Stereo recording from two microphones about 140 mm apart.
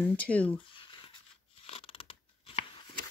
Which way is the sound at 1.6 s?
40° left (ahead or behind).